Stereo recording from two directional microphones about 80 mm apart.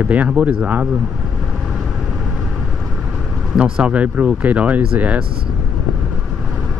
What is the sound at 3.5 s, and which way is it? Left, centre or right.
Speech, centre.